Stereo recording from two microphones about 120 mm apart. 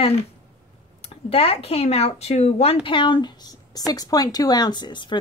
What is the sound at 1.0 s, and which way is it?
A woman's voice, 55° left (ahead or behind).